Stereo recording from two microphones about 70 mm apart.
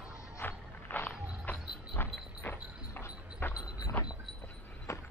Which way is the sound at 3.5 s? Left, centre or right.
Left.